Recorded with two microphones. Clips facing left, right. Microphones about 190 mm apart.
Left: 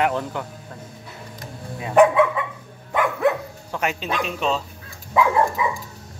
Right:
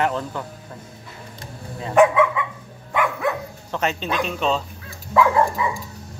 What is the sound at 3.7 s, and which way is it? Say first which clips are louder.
Speech: right 1 dB; 10° left (ahead or behind).